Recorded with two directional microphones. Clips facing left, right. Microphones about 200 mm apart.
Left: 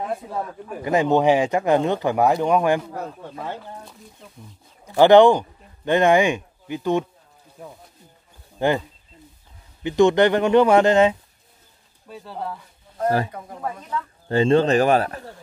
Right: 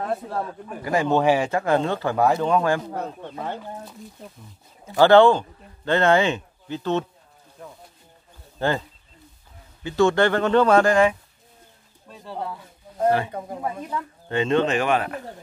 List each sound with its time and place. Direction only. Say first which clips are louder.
0.3 s speech: even; centre (ahead or behind)
0.8 s speech: left 2 dB; 20° left (ahead or behind)
4.8 s speech: left 2 dB; 15° left (ahead or behind)
9.8 s speech: left 3 dB; 20° left (ahead or behind)
12.1 s speech: left 1 dB; centre (ahead or behind)
13.3 s speech: right 5 dB; 25° right (ahead or behind)
13.6 s speech: left 2 dB; 10° right (ahead or behind)
14.3 s speech: left 4 dB; 35° left (ahead or behind)